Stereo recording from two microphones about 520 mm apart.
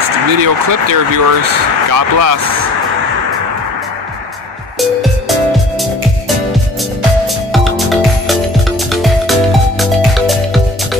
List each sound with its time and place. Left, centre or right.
0.3 s speech: right
7.5 s music: centre